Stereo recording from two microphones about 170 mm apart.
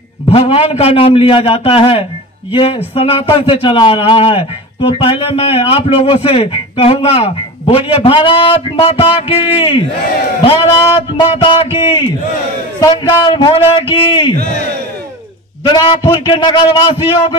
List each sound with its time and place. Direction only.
0.3 s a man's voice: 35° left (ahead or behind)
15.6 s a man's voice: 25° left (ahead or behind)